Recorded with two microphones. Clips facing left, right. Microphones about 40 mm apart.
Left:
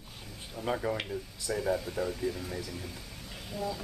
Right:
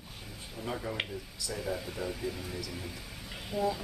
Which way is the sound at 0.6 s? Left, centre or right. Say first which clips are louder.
Left 5 dB; centre.